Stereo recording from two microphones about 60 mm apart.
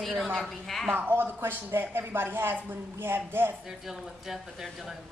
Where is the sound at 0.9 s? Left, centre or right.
Right.